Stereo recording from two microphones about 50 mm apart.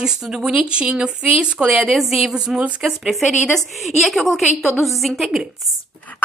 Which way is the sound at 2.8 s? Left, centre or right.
Centre.